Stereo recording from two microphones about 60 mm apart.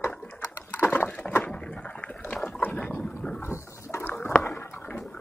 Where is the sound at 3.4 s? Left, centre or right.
Left.